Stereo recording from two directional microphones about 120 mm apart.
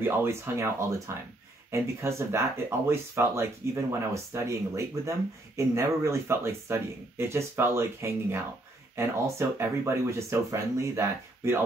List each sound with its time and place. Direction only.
0.0 s speech: 20° right (ahead or behind)